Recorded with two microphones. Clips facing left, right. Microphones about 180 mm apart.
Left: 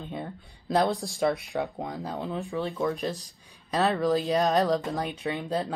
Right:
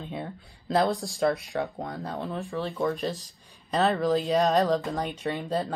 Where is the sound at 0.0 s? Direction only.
Centre (ahead or behind).